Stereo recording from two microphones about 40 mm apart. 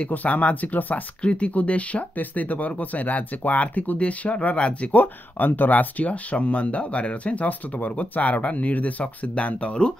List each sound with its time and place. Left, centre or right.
0.1 s speech: left
1.2 s speech: left
4.9 s speech: left
7.4 s speech: left